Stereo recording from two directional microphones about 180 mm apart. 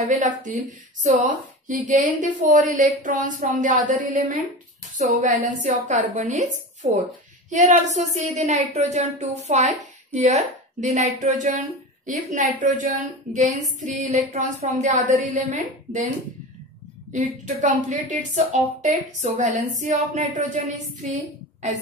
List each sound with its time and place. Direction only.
0.1 s speech: 45° right (ahead or behind)
17.1 s speech: 45° right (ahead or behind)